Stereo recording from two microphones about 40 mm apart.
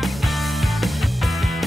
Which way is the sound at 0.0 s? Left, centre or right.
Centre.